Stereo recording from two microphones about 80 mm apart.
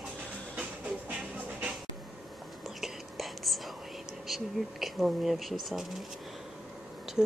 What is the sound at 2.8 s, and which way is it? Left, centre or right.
Whispering, centre.